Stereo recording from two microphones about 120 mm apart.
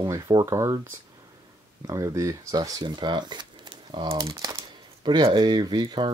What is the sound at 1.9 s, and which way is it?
Speech, 30° right (ahead or behind).